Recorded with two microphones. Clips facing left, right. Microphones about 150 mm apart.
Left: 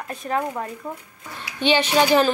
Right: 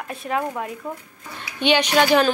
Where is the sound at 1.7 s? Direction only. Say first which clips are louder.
Even; centre (ahead or behind).